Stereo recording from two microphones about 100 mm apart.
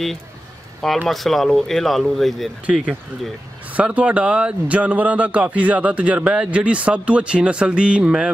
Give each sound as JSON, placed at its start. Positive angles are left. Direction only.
{"t": 1.0, "sound": "speech", "side_deg": 0}
{"t": 2.6, "sound": "speech", "side_deg": -15}